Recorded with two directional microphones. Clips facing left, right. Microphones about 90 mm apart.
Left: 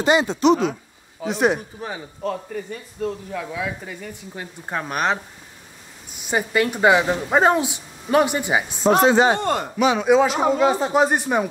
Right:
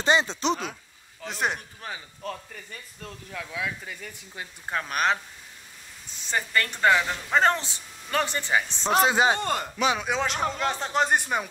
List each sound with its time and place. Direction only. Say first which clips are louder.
0.0 s speech: left 6 dB; 15° left (ahead or behind)
1.2 s speech: left 9 dB; 5° left (ahead or behind)
9.2 s a man's voice: left 5 dB; 25° left (ahead or behind)
9.9 s speech: left 11 dB; 5° left (ahead or behind)